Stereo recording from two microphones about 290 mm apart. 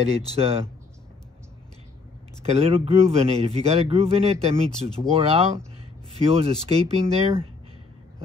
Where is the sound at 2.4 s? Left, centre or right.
Right.